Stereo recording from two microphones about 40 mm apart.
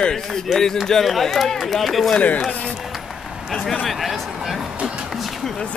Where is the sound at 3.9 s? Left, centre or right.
Centre.